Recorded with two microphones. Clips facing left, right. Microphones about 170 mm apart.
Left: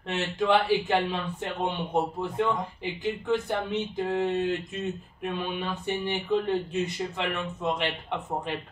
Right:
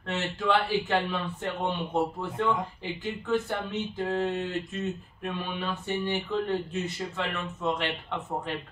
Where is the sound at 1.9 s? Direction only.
15° left (ahead or behind).